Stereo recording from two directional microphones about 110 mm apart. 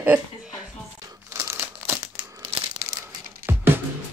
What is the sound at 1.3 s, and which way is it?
Crumpling, 25° right (ahead or behind).